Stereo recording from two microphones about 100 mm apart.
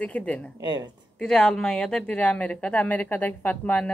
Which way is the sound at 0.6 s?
45° right (ahead or behind).